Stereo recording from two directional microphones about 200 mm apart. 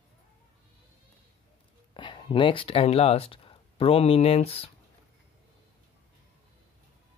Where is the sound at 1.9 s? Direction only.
25° left (ahead or behind).